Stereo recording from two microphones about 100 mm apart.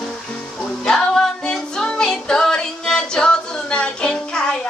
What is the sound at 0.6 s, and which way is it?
Music, 5° left (ahead or behind).